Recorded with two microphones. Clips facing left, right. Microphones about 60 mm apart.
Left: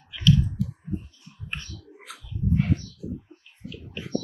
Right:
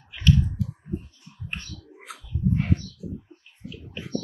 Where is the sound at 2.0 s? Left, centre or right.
Right.